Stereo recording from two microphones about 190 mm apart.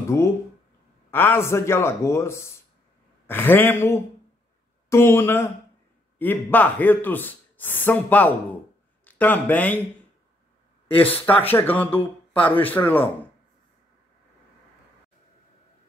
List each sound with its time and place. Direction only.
0.1 s a man's voice: 15° left (ahead or behind)
11.2 s speech: 10° left (ahead or behind)